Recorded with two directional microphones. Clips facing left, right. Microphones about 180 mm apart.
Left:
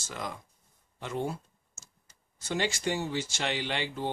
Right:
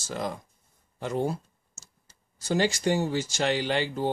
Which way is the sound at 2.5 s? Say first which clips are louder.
Right 6 dB; 40° right (ahead or behind).